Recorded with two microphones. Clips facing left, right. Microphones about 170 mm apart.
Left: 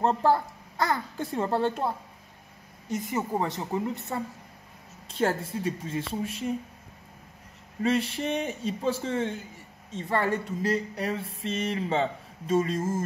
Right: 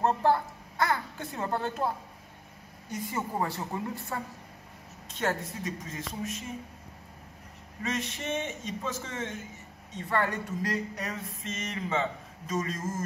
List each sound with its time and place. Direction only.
0.0 s a child's voice: 35° left (ahead or behind)
2.9 s speech: 25° left (ahead or behind)
5.0 s speech: 30° left (ahead or behind)
7.8 s speech: 30° left (ahead or behind)